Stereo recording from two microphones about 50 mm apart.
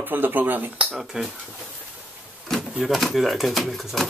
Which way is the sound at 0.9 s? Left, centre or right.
Centre.